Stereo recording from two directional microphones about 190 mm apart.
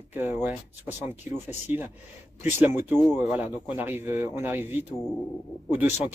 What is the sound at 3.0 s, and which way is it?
Speech, centre (ahead or behind).